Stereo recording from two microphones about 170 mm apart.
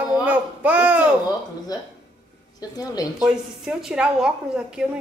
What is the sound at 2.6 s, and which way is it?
Speech, 20° left (ahead or behind).